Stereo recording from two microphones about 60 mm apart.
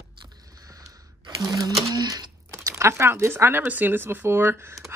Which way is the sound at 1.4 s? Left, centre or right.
Right.